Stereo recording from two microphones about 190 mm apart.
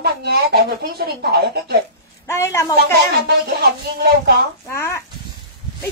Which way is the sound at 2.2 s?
15° left (ahead or behind).